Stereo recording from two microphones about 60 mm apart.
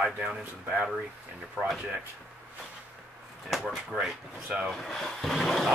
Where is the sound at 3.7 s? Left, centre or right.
Centre.